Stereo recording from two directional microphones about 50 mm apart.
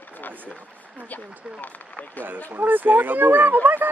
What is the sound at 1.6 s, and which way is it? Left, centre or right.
Speech, left.